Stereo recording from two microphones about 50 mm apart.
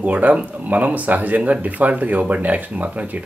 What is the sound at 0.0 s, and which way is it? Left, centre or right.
Speech, right.